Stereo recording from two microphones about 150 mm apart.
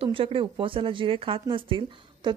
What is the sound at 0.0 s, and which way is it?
A woman's voice, 35° right (ahead or behind).